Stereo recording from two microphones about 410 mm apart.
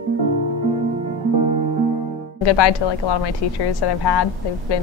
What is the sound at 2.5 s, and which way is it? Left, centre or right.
A woman's voice, left.